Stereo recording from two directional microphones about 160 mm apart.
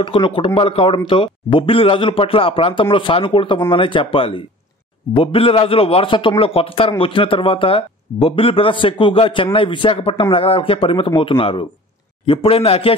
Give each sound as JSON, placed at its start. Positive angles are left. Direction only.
{"t": 0.0, "sound": "a man's voice", "side_deg": 30}